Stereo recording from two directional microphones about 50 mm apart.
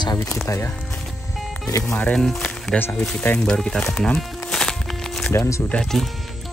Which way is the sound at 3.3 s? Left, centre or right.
Centre.